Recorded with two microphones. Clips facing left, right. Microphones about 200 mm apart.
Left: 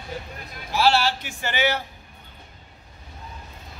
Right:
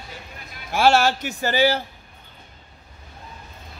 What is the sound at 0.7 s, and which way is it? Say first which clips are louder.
Speech: right 3 dB; 50° right (ahead or behind).